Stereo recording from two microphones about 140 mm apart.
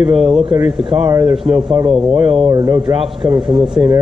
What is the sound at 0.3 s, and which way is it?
Speech, 45° right (ahead or behind).